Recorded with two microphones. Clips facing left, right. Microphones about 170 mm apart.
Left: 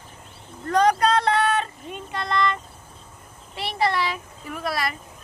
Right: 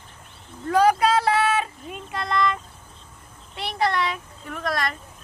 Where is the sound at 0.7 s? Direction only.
5° right (ahead or behind).